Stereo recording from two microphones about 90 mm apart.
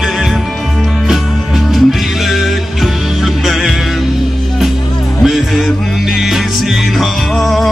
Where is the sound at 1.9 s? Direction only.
Centre (ahead or behind).